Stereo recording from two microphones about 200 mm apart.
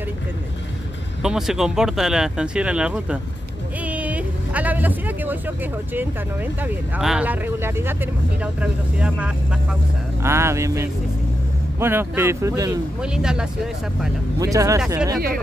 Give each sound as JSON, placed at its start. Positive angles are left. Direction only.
{"t": 1.2, "sound": "speech", "side_deg": -5}
{"t": 13.0, "sound": "speech", "side_deg": -5}
{"t": 14.4, "sound": "speech", "side_deg": -15}